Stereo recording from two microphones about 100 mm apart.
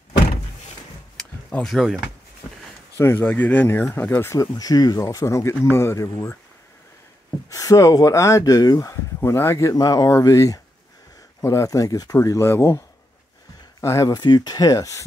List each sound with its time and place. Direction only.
1.1 s a sound: 5° left (ahead or behind)
3.0 s speech: 25° left (ahead or behind)
3.3 s speech: 15° left (ahead or behind)
4.3 s speech: 35° left (ahead or behind)
7.4 s speech: 35° left (ahead or behind)
9.2 s speech: 25° left (ahead or behind)
9.8 s speech: 40° left (ahead or behind)
14.1 s speech: 45° left (ahead or behind)